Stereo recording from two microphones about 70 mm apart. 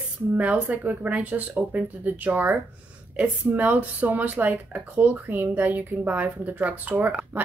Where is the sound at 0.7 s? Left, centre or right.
Right.